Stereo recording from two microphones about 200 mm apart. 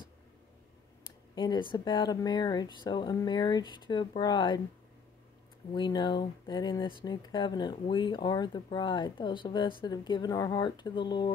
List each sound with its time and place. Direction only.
1.3 s speech: 20° left (ahead or behind)
5.7 s speech: 20° left (ahead or behind)